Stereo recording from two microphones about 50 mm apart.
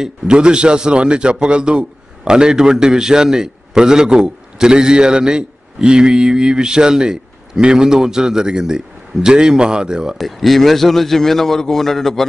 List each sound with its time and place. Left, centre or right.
0.0 s a man's voice: centre
10.1 s a man's voice: centre